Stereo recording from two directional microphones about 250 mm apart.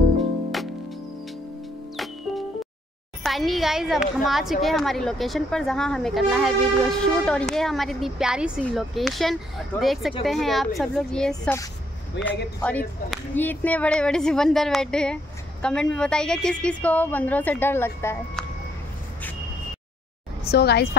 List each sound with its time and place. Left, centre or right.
3.3 s a woman's voice: centre
12.2 s speech: left
12.5 s a woman's voice: centre
20.4 s a woman's voice: left